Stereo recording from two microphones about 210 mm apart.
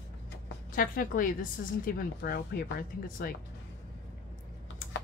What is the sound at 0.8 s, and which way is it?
Speech, 40° left (ahead or behind).